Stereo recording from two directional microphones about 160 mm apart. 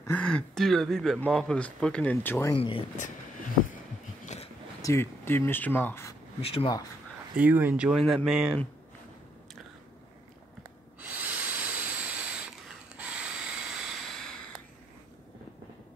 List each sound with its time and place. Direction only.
0.0 s speech: 10° left (ahead or behind)
2.5 s speech: 35° left (ahead or behind)
4.8 s speech: 15° left (ahead or behind)
6.4 s speech: 35° left (ahead or behind)
7.3 s speech: 10° right (ahead or behind)
10.6 s a sound: 10° right (ahead or behind)